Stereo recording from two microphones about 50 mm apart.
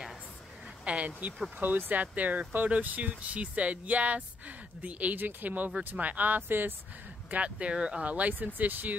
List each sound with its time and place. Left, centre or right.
0.8 s speech: right
1.6 s speech: right
7.2 s speech: right